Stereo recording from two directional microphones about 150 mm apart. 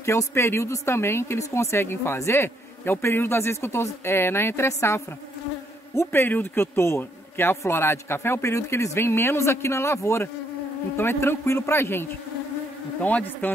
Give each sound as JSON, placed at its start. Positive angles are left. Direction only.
{"t": 0.0, "sound": "speech", "side_deg": 20}